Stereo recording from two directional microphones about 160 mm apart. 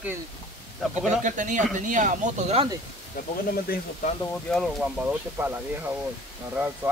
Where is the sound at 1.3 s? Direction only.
50° right (ahead or behind).